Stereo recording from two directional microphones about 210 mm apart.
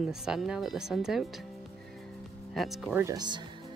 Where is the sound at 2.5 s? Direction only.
Centre (ahead or behind).